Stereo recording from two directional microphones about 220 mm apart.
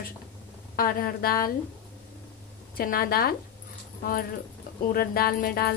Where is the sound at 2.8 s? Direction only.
40° left (ahead or behind).